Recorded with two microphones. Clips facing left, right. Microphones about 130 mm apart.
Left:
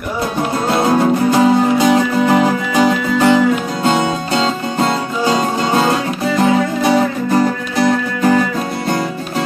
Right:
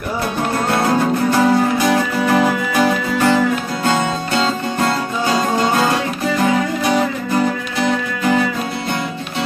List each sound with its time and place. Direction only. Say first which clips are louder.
0.8 s music: left 5 dB; 20° left (ahead or behind); by 8.4 s 40° left (ahead or behind)